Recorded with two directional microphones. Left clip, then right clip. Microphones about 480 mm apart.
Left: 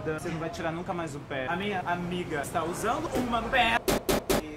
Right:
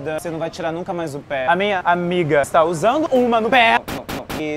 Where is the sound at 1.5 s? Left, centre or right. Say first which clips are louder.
Right 13 dB; right.